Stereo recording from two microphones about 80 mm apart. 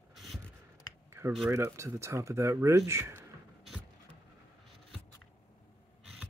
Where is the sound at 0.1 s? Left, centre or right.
Centre.